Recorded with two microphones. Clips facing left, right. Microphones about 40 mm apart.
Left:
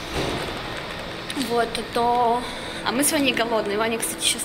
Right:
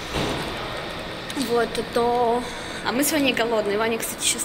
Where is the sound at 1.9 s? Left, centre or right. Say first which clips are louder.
Even; centre.